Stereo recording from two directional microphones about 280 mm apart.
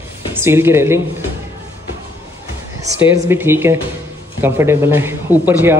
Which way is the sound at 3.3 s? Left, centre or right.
Centre.